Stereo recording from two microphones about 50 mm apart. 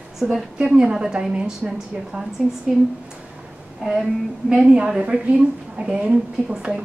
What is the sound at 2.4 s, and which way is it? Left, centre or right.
Speech, centre.